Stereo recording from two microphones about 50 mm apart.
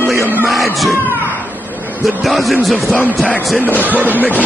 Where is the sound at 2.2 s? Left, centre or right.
Centre.